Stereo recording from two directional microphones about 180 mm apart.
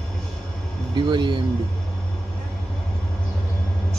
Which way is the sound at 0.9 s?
25° right (ahead or behind).